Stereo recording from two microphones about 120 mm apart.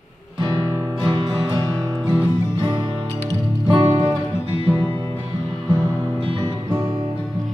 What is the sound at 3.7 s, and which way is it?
Music, 45° right (ahead or behind).